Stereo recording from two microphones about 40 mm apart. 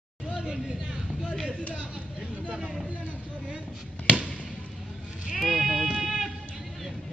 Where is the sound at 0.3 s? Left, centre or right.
Right.